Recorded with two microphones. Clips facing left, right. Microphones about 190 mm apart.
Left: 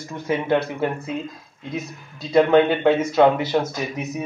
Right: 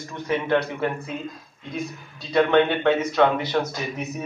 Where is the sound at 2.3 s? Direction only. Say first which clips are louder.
Left 3 dB; 25° left (ahead or behind).